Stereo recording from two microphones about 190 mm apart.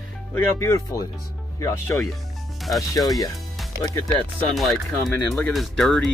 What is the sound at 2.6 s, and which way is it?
Speech, centre (ahead or behind).